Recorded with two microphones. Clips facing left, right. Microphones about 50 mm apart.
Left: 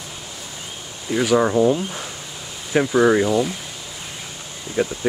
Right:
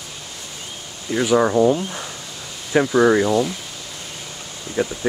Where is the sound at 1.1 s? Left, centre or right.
Centre.